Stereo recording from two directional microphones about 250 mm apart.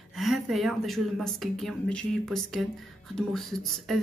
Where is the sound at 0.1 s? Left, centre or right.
Centre.